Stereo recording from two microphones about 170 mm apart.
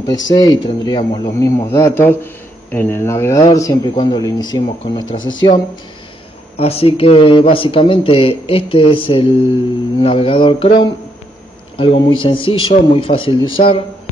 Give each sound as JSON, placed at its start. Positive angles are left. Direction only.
{"t": 0.3, "sound": "speech", "side_deg": 25}
{"t": 1.4, "sound": "speech", "side_deg": 20}
{"t": 1.9, "sound": "speech", "side_deg": 10}
{"t": 6.6, "sound": "speech", "side_deg": 35}